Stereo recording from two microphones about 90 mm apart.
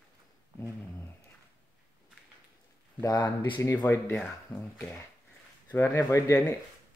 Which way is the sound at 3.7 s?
25° left (ahead or behind).